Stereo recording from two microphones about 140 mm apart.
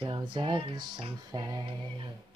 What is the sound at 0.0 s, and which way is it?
Music, 35° right (ahead or behind).